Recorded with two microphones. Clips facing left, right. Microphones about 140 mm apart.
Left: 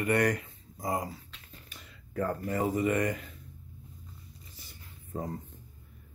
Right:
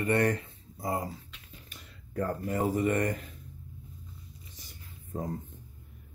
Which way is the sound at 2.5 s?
Centre (ahead or behind).